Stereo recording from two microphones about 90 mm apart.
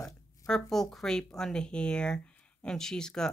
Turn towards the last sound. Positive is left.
turn(degrees=5)  # may be behind; listen again after turning